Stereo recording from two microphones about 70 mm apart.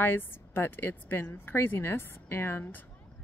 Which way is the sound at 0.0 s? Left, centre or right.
Left.